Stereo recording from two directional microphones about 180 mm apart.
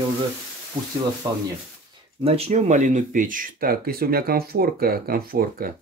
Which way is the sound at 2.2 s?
35° right (ahead or behind).